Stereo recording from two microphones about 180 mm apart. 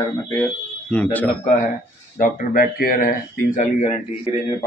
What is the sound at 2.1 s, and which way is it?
Speech, 50° left (ahead or behind).